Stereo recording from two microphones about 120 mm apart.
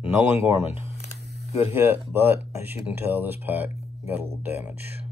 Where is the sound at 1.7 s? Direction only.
15° right (ahead or behind).